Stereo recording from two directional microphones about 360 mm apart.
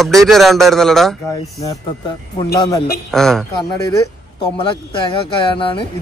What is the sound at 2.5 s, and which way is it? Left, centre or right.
Speech, centre.